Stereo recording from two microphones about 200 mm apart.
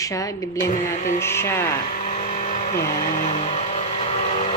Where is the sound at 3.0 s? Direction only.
40° left (ahead or behind).